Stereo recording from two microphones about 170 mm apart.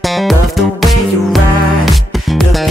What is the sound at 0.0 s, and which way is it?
Music, centre (ahead or behind).